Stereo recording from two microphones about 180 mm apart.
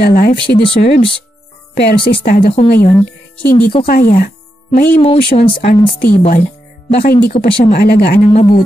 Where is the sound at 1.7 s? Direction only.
65° left (ahead or behind).